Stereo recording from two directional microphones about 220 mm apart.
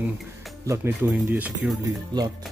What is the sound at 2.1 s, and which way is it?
Speech, 20° right (ahead or behind).